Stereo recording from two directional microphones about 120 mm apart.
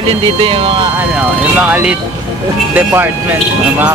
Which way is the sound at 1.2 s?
10° right (ahead or behind).